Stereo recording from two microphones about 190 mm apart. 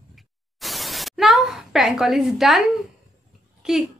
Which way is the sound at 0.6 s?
Centre (ahead or behind).